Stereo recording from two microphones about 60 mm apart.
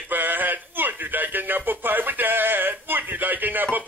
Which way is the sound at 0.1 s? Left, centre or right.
Right.